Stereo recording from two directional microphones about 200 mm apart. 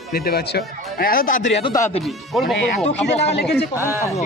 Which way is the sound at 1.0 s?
45° left (ahead or behind).